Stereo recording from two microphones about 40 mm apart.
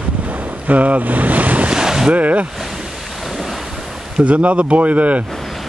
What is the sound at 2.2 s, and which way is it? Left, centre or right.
Speech, right.